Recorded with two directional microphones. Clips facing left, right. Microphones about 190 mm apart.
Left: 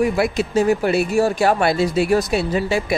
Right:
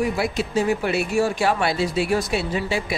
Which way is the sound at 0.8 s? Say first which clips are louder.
Left 4 dB; 40° left (ahead or behind).